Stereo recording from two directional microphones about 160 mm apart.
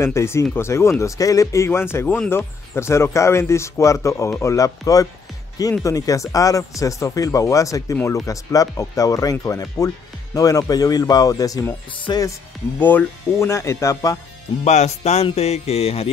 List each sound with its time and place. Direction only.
0.0 s speech: 15° left (ahead or behind)
14.6 s music: 45° left (ahead or behind)